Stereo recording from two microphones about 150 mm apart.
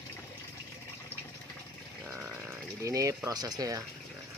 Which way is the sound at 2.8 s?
20° right (ahead or behind).